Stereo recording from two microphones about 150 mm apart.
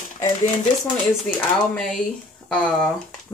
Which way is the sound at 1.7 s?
5° left (ahead or behind).